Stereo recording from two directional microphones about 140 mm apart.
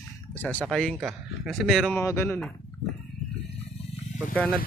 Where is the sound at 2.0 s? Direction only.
15° left (ahead or behind).